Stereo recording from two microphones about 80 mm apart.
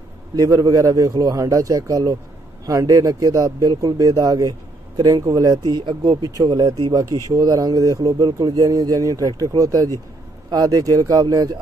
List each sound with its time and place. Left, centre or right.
0.4 s speech: right
5.7 s speech: right
6.4 s speech: right